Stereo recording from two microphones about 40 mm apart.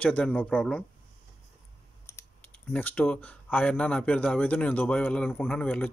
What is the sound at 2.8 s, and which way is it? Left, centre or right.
Speech, left.